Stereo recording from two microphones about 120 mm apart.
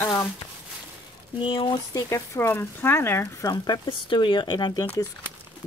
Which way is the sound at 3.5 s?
40° left (ahead or behind).